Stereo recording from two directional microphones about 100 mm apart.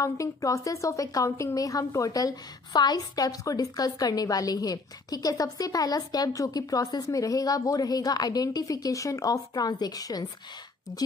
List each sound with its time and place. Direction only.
0.0 s a woman's voice: 30° left (ahead or behind)